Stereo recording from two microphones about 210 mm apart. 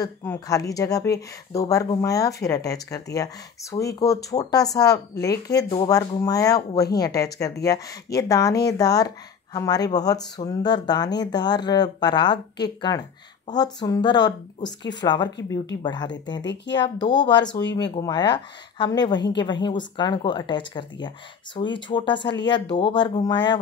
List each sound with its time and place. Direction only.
0.0 s speech: 15° left (ahead or behind)